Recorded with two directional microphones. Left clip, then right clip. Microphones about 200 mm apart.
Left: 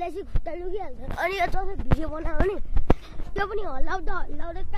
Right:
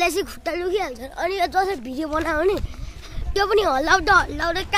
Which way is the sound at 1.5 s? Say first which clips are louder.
Right 9 dB; 45° right (ahead or behind).